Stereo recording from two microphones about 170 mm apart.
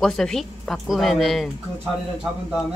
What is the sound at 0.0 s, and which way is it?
Speech, 5° left (ahead or behind).